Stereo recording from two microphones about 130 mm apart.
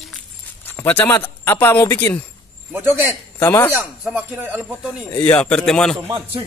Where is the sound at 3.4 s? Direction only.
20° left (ahead or behind).